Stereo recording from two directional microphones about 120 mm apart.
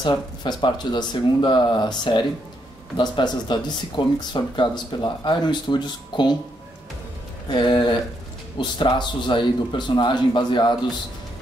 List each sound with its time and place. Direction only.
0.4 s speech: 40° left (ahead or behind)
7.4 s speech: 40° left (ahead or behind)